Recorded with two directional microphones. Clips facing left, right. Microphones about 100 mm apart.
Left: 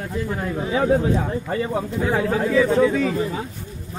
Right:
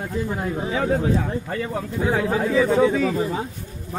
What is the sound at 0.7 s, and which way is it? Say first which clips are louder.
Speech: left 4 dB; 25° left (ahead or behind).